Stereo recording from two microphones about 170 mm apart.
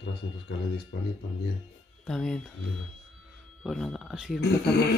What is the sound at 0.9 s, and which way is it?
Speech, 80° left.